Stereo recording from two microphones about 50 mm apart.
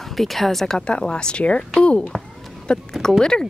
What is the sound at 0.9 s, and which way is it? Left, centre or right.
Speech, centre.